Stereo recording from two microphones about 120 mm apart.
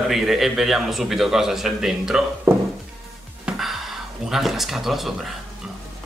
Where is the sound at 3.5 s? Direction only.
Centre (ahead or behind).